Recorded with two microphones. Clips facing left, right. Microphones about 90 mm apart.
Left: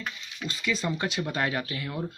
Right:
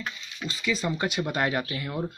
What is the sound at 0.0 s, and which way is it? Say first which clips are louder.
Speech: right 1 dB; 5° right (ahead or behind).